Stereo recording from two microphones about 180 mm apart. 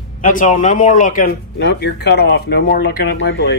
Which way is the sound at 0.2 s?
45° left (ahead or behind).